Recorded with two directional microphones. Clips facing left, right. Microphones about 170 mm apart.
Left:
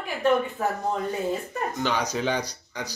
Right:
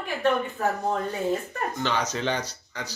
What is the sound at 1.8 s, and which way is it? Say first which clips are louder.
Speech: left 1 dB; 10° left (ahead or behind).